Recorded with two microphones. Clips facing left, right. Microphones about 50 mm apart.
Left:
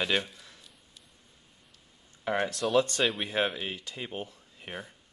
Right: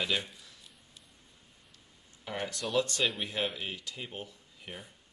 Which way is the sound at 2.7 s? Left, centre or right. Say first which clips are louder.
Left 4 dB; left.